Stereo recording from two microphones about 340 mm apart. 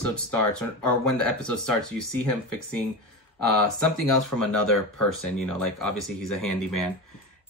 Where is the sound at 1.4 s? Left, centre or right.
Left.